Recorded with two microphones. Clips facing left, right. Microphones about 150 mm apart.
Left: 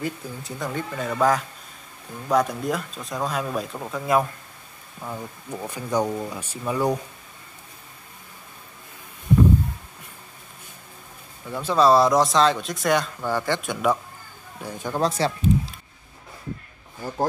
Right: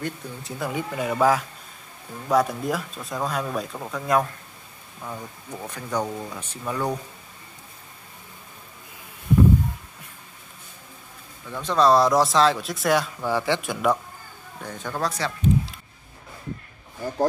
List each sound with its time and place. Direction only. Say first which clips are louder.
0.0 s speech: left 2 dB; centre (ahead or behind)
11.5 s speech: left 1 dB; 5° left (ahead or behind)
14.6 s speech: left 2 dB; 10° left (ahead or behind)
15.0 s speech: left 5 dB; 25° left (ahead or behind)